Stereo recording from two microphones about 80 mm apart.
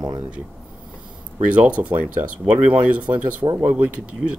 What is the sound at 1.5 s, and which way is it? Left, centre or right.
Speech, centre.